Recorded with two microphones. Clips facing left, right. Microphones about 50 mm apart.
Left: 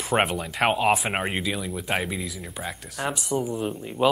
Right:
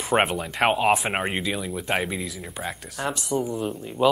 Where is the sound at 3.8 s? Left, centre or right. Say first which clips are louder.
Right 1 dB; centre.